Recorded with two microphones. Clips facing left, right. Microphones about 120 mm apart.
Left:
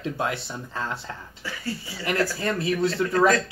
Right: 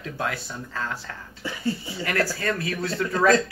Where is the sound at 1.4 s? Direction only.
25° right (ahead or behind).